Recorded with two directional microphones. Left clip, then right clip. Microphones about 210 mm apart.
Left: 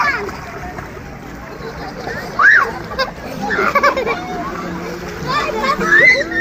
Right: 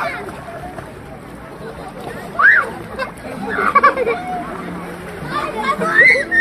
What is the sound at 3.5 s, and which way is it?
Children playing, 45° left (ahead or behind).